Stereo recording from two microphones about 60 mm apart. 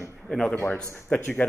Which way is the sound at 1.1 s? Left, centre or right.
Left.